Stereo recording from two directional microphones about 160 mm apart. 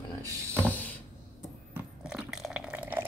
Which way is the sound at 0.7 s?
10° left (ahead or behind).